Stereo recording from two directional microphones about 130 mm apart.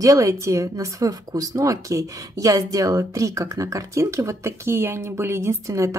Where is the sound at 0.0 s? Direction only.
25° right (ahead or behind).